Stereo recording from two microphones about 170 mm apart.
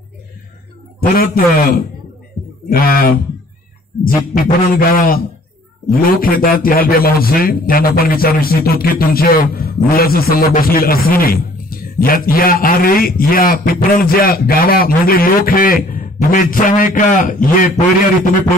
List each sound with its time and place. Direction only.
1.1 s a man's voice: 60° left (ahead or behind)